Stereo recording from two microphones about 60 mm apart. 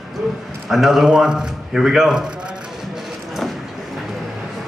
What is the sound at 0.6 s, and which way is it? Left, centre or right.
A woman's voice, centre.